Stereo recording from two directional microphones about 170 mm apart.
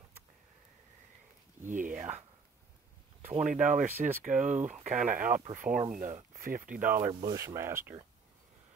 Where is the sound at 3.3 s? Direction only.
45° right (ahead or behind).